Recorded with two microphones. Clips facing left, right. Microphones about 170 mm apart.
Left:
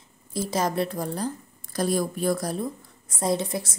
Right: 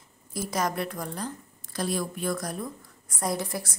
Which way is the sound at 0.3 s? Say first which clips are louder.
Left 3 dB; 25° left (ahead or behind).